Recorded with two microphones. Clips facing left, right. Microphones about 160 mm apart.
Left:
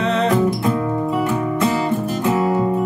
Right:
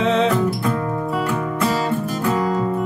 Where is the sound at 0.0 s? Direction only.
Centre (ahead or behind).